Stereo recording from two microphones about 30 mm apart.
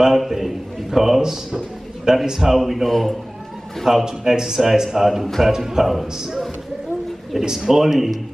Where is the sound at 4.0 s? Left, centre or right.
Centre.